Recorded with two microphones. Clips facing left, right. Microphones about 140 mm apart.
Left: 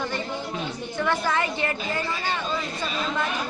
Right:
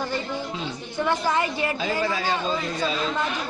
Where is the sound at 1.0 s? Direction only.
15° right (ahead or behind).